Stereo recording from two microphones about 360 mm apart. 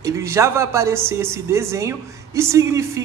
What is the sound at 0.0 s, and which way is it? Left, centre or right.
Speech, centre.